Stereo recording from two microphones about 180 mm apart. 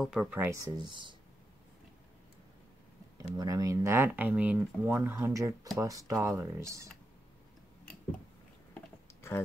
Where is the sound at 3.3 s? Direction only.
20° right (ahead or behind).